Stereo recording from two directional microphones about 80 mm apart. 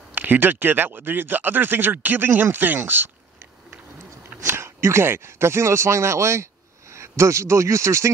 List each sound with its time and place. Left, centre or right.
0.1 s speech: right
4.4 s speech: right